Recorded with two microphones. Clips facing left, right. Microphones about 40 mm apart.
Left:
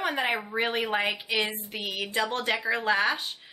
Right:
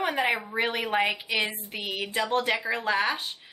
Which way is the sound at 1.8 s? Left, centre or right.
Centre.